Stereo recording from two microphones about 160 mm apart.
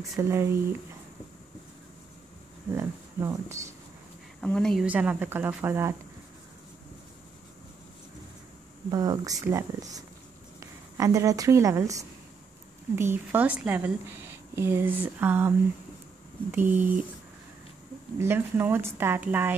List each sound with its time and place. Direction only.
0.1 s a woman's voice: 15° right (ahead or behind)
2.7 s a woman's voice: 15° right (ahead or behind)
4.4 s a woman's voice: 5° left (ahead or behind)
4.8 s a woman's voice: 10° right (ahead or behind)
8.9 s a woman's voice: 25° right (ahead or behind)
16.5 s a woman's voice: 10° right (ahead or behind)
18.2 s a woman's voice: 15° right (ahead or behind)